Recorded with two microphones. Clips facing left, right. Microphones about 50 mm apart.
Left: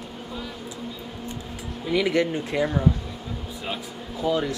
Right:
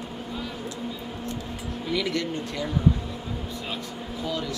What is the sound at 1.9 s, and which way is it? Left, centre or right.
Speech, left.